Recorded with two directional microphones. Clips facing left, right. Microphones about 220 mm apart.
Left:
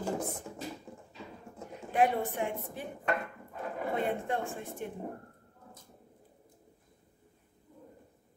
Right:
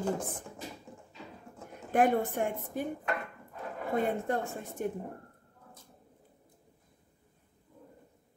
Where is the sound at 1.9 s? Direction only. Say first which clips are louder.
Right 2 dB; 50° right (ahead or behind).